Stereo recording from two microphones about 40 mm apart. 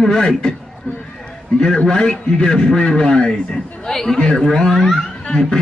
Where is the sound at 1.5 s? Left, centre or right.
Left.